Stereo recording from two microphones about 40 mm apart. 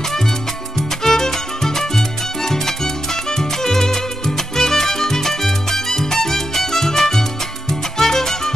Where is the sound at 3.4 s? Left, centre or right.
Centre.